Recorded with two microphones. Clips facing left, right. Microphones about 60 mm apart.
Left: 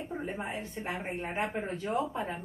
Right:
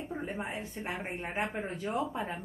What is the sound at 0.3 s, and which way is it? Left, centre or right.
A woman's voice, centre.